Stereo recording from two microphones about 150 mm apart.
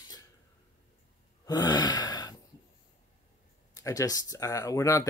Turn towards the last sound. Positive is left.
turn(degrees=20)  # may be behind; listen again after turning